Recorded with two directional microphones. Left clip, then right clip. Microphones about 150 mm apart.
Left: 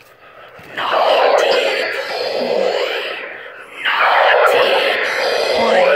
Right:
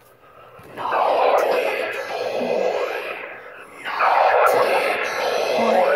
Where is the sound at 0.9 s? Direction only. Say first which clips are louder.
Left 5 dB; 10° left (ahead or behind).